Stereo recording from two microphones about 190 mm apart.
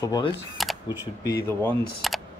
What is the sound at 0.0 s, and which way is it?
Speech, 20° left (ahead or behind).